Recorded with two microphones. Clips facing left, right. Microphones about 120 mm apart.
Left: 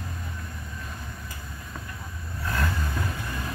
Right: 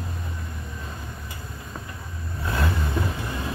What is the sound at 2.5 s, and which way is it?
Vehicle, 25° right (ahead or behind).